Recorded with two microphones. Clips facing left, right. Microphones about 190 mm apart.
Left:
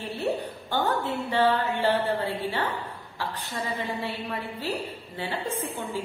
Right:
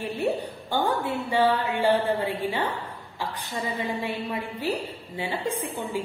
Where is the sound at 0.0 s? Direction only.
10° right (ahead or behind).